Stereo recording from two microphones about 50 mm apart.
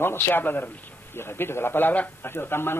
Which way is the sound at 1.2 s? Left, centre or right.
Left.